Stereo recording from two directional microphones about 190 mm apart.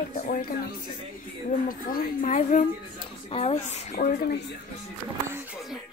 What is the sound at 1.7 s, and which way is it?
A woman's voice, 50° left (ahead or behind).